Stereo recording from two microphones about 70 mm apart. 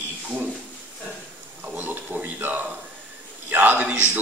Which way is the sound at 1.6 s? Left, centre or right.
Right.